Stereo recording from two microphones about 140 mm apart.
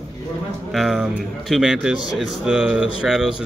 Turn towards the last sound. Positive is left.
turn(degrees=-5)  # may be behind; listen again after turning